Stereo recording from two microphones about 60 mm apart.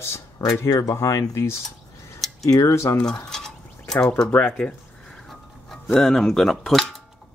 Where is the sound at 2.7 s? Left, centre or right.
Left.